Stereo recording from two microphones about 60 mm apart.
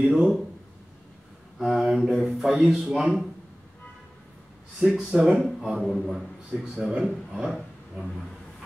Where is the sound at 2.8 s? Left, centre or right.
Centre.